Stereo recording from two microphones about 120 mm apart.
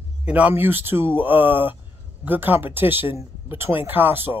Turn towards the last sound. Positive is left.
turn(degrees=-15)  # may be behind; listen again after turning